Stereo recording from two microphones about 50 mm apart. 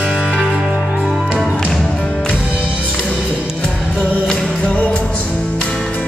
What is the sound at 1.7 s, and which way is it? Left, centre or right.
Music, centre.